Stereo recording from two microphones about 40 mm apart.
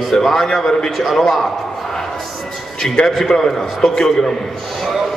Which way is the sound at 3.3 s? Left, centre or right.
Centre.